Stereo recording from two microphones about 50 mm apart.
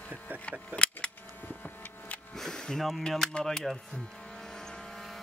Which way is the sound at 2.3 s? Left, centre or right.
Centre.